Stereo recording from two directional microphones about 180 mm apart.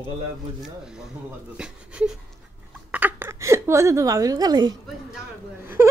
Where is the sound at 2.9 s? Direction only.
10° right (ahead or behind).